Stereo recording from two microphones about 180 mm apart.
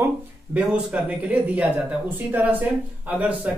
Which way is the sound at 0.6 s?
5° right (ahead or behind).